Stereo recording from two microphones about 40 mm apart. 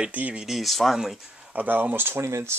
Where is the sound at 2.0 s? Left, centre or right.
Right.